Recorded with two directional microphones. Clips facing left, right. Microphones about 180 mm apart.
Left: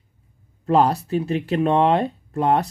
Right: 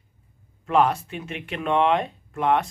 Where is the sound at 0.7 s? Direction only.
35° left (ahead or behind).